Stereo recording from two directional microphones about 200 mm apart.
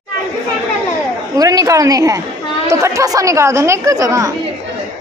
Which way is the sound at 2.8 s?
15° right (ahead or behind).